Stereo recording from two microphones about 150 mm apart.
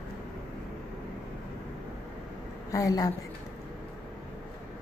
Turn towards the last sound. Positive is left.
turn(degrees=25)  # may be behind; listen again after turning